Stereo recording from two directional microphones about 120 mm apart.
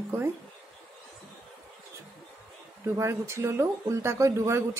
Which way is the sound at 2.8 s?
25° right (ahead or behind).